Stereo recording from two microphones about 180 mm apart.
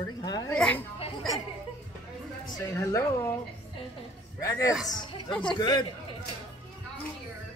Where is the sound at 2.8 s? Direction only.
15° left (ahead or behind).